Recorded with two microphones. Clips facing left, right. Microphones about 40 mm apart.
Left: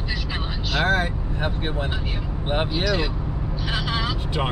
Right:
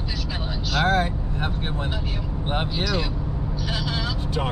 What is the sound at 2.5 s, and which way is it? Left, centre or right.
Speech, centre.